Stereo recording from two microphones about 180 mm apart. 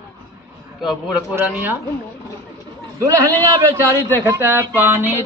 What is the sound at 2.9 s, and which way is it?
Speech, 15° right (ahead or behind).